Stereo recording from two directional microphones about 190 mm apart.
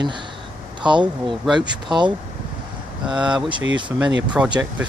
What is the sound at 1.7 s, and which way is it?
Speech, 25° right (ahead or behind).